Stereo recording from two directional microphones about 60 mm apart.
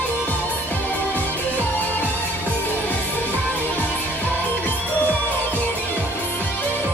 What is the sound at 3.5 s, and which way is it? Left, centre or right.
Music, left.